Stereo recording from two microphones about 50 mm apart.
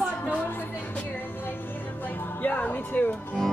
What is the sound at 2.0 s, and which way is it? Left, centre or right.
Speech, left.